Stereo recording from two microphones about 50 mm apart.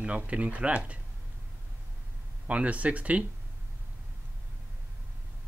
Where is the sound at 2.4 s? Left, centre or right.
Right.